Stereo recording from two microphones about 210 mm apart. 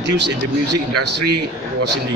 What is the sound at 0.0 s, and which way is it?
Speech, 55° right (ahead or behind).